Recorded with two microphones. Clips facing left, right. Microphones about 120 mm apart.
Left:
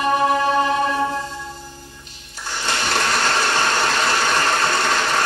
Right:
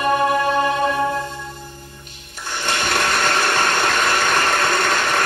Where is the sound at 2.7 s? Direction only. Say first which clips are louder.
Right 1 dB; 50° right (ahead or behind).